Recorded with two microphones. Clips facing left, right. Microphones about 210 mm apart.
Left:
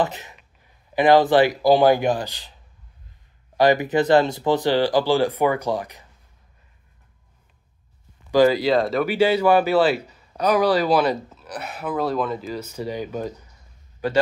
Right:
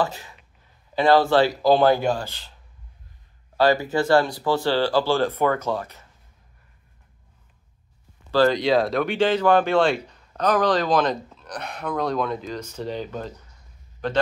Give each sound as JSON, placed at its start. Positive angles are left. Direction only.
{"t": 0.0, "sound": "speech", "side_deg": 20}
{"t": 3.5, "sound": "speech", "side_deg": 20}
{"t": 8.3, "sound": "a man's voice", "side_deg": 10}